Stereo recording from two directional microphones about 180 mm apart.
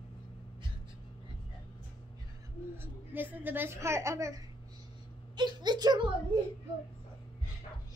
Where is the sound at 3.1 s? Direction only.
10° right (ahead or behind).